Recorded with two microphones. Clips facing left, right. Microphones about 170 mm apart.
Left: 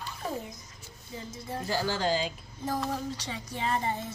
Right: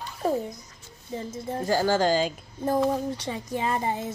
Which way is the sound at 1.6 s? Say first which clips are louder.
Right 7 dB; 45° right (ahead or behind).